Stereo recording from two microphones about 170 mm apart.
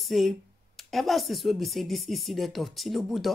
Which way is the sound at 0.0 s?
Centre (ahead or behind).